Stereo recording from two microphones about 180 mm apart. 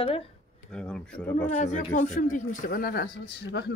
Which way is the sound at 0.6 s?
5° left (ahead or behind).